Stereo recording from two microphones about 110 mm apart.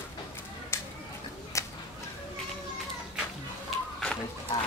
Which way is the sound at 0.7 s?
25° left (ahead or behind).